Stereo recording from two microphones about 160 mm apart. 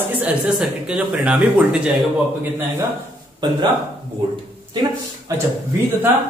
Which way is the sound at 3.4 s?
30° right (ahead or behind).